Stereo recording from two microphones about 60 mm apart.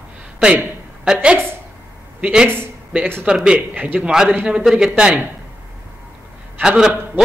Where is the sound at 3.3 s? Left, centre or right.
Centre.